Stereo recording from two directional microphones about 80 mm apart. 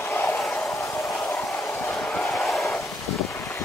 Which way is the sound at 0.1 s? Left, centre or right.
Left.